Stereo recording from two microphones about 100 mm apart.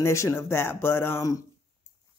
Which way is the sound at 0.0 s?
30° left (ahead or behind).